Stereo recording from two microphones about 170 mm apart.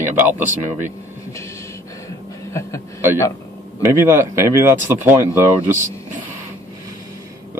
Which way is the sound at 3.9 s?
15° right (ahead or behind).